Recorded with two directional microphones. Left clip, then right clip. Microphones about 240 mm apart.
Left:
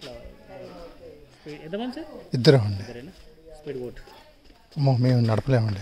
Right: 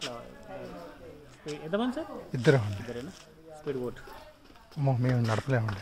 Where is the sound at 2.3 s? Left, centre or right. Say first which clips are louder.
Left 6 dB; left.